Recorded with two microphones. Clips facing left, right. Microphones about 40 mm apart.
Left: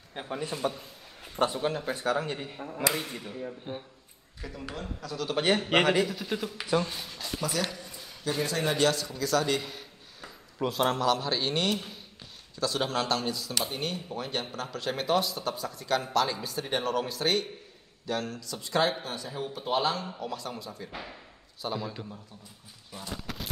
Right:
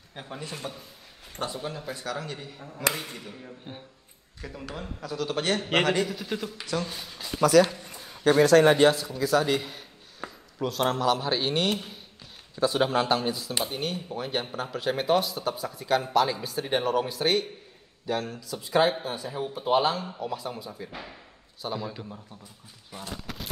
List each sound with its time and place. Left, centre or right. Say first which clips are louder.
0.1 s a man's voice: left 4 dB; centre
1.4 s speech: left 5 dB; left
2.9 s speech: left 2 dB; centre
5.4 s speech: left 1 dB; centre
6.6 s a man's voice: left 6 dB; centre
7.6 s a sound: right 3 dB; right
8.9 s speech: right 3 dB; centre
10.2 s a sound: right 7 dB; right
10.8 s speech: right 1 dB; centre
12.5 s speech: right 5 dB; centre
23.1 s a sound: left 2 dB; centre